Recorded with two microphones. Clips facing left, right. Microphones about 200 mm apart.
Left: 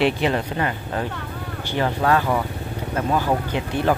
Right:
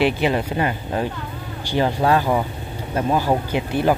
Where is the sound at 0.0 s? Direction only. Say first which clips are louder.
Right 1 dB; centre (ahead or behind).